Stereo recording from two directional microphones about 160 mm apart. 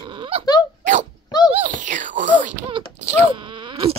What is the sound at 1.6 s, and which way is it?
Wail, 55° right (ahead or behind).